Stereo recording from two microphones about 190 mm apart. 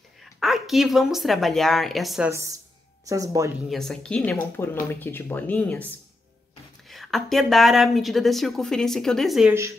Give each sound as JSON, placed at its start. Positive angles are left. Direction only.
{"t": 0.2, "sound": "speech", "side_deg": 0}
{"t": 3.6, "sound": "speech", "side_deg": 0}
{"t": 6.9, "sound": "a woman's voice", "side_deg": 0}
{"t": 9.5, "sound": "speech", "side_deg": -15}